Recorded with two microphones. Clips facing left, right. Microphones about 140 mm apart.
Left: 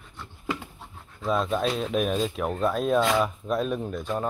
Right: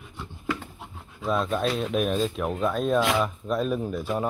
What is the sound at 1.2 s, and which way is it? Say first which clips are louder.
Speech: even; centre (ahead or behind).